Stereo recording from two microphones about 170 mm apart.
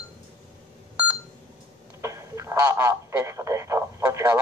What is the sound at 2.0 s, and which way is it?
Speech, 20° right (ahead or behind).